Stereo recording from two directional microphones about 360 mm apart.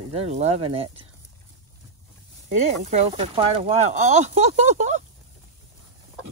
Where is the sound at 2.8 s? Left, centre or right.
Centre.